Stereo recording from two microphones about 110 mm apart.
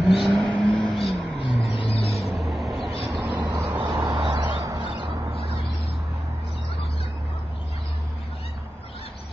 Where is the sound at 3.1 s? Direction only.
25° right (ahead or behind).